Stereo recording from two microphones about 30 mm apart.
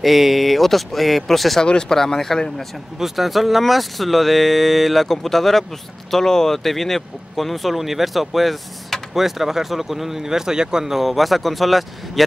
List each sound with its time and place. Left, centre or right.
0.0 s speech: centre
1.6 s speech: left
3.0 s speech: centre; by 10.9 s right
10.9 s speech: centre